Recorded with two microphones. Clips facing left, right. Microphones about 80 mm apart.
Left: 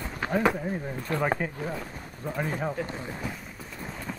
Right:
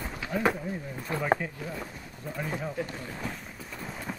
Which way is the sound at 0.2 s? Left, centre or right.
Left.